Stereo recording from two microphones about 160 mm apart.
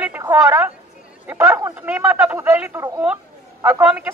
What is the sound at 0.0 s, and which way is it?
A man's voice, 10° right (ahead or behind).